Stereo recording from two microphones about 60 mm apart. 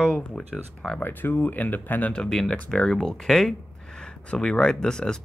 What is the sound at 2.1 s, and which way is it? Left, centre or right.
Speech, centre.